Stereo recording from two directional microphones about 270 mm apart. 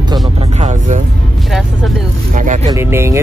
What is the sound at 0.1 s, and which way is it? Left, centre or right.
Music, right.